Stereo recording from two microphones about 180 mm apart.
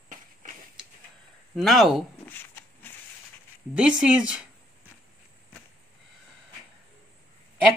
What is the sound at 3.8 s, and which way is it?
Speech, 5° right (ahead or behind).